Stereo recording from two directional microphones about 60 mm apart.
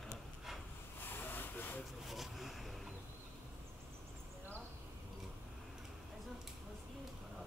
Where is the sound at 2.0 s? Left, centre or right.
Centre.